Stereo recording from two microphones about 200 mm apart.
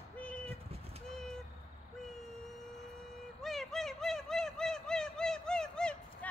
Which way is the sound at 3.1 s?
Centre (ahead or behind).